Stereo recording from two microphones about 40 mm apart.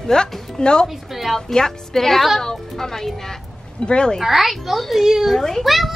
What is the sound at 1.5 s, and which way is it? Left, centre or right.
Speech, centre.